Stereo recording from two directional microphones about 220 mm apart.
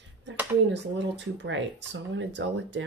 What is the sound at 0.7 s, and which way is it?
Speech, 55° right (ahead or behind).